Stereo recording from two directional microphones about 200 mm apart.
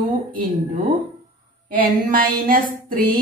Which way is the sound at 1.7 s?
45° right (ahead or behind).